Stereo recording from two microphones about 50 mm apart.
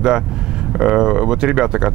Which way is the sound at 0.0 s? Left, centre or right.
Centre.